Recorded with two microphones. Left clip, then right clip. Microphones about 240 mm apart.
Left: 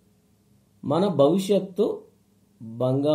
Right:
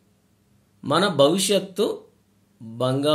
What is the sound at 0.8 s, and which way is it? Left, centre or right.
Speech, right.